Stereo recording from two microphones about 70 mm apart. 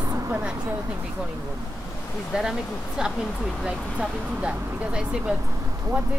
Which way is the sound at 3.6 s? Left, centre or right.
Centre.